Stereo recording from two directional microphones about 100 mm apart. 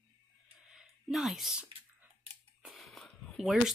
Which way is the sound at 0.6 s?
5° right (ahead or behind).